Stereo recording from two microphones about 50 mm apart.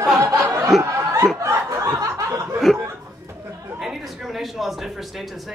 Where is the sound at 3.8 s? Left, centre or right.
Centre.